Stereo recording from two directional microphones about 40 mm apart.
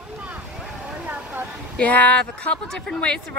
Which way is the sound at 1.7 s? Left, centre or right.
Left.